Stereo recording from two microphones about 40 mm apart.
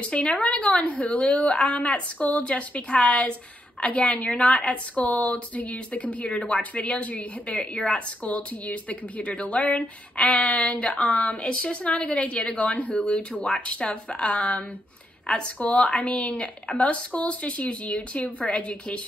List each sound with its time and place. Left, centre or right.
0.0 s a woman's voice: left
16.0 s a woman's voice: left